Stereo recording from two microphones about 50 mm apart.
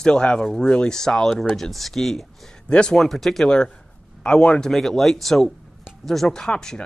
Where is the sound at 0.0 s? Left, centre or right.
Centre.